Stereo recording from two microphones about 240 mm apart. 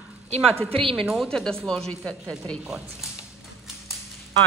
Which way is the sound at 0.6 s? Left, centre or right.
Right.